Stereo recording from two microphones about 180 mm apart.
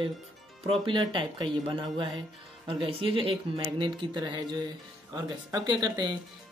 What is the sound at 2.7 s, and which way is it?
Speech, 30° right (ahead or behind).